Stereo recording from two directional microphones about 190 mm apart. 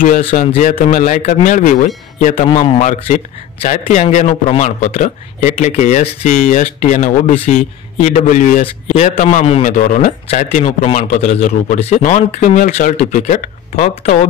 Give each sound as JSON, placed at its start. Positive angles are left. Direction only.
{"t": 0.0, "sound": "a man's voice", "side_deg": 45}